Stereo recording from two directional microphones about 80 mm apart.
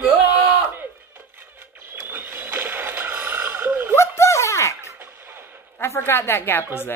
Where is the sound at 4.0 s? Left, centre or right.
Left.